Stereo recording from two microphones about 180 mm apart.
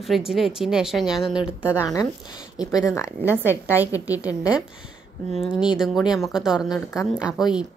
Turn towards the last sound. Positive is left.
turn(degrees=-5)  # may be behind; listen again after turning